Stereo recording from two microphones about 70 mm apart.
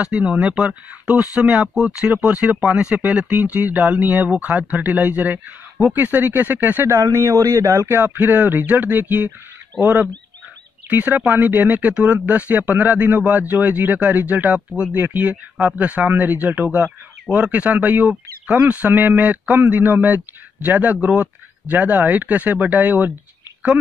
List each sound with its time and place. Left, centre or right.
0.0 s speech: centre
1.5 s speech: centre
2.2 s speech: right
7.1 s speech: right
8.0 s speech: right
9.7 s speech: centre
10.9 s speech: right